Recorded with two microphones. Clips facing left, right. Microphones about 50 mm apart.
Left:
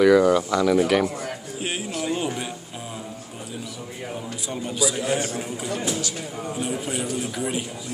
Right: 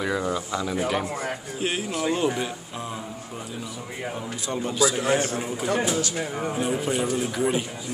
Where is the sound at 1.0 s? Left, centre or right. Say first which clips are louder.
Left 2 dB; right.